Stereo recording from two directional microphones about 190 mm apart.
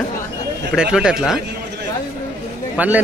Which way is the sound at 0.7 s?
5° right (ahead or behind).